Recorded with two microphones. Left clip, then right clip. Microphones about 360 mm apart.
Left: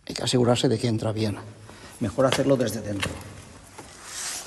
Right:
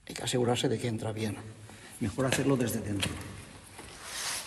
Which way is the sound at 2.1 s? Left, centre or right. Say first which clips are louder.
Left 8 dB; centre.